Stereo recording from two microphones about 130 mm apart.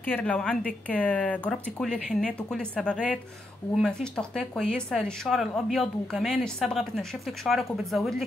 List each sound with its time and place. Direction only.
0.0 s speech: 10° left (ahead or behind)